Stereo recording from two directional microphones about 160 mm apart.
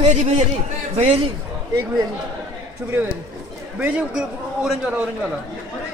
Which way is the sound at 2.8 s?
10° right (ahead or behind).